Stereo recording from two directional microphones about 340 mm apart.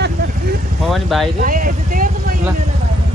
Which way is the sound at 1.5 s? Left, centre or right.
Right.